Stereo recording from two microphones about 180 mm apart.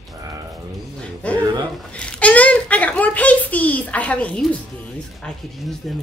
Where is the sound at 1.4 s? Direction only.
20° right (ahead or behind).